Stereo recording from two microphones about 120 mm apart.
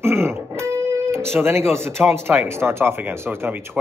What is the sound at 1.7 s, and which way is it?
Speech, 20° right (ahead or behind).